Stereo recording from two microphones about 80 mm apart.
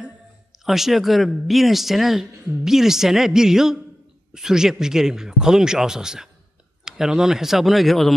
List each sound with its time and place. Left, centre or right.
0.7 s speech: centre